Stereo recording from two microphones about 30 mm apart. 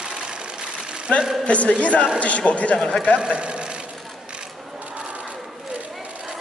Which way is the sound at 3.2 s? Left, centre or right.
Right.